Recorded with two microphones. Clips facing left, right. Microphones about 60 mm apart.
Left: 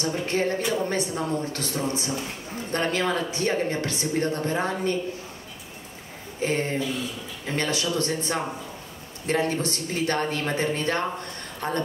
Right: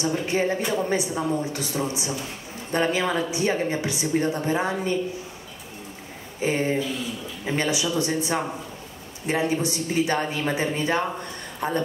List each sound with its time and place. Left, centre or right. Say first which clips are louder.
0.0 s speech: right 2 dB; centre
6.4 s speech: right 2 dB; centre